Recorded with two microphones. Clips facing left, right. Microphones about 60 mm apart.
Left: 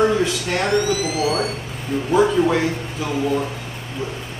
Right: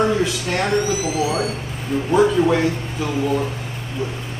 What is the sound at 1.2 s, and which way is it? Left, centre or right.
Speech, centre.